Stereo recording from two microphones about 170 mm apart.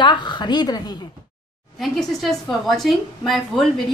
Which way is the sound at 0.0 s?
25° left (ahead or behind).